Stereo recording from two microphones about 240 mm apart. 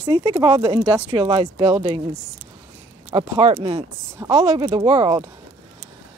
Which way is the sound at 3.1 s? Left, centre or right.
Right.